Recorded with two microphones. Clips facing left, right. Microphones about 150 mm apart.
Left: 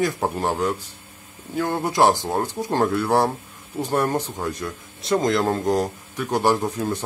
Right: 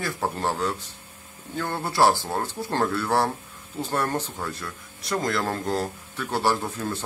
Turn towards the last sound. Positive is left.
turn(degrees=15)  # may be behind; listen again after turning